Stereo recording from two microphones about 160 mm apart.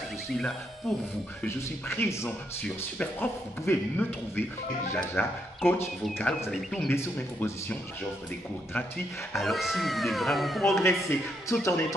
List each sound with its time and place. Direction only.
0.3 s speech: centre (ahead or behind)
1.4 s speech: 15° left (ahead or behind)
6.5 s speech: centre (ahead or behind)
6.9 s speech: 15° left (ahead or behind)
8.7 s speech: 10° left (ahead or behind)
9.4 s speech: centre (ahead or behind)
10.8 s speech: 15° left (ahead or behind)